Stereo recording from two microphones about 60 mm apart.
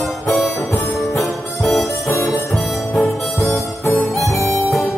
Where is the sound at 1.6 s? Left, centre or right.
Centre.